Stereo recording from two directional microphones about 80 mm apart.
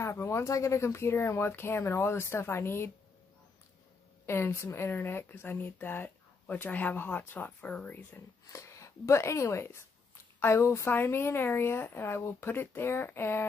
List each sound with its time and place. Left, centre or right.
0.0 s speech: left
4.3 s speech: left
8.5 s speech: left